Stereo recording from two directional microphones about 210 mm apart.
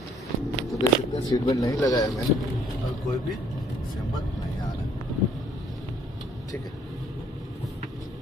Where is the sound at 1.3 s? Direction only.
15° left (ahead or behind).